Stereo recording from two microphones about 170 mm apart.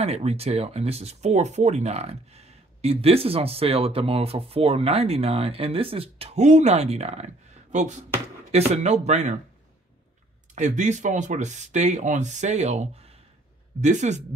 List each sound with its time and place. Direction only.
0.0 s speech: 40° right (ahead or behind)
10.5 s speech: 45° right (ahead or behind)